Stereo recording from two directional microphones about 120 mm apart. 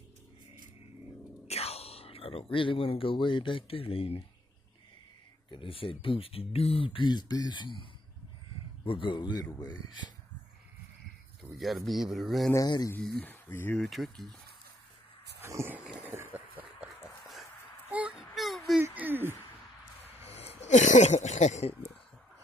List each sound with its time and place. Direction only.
1.5 s speech: 60° left (ahead or behind)
5.5 s speech: 45° left (ahead or behind)
8.8 s speech: 45° left (ahead or behind)
11.5 s speech: centre (ahead or behind)
12.5 s speech: 30° left (ahead or behind)
13.2 s speech: 15° left (ahead or behind)
13.7 s speech: centre (ahead or behind)
15.4 s a sound: 20° right (ahead or behind)
18.3 s whimper: centre (ahead or behind)
18.9 s a sound: 15° right (ahead or behind)
20.2 s a sound: 60° left (ahead or behind)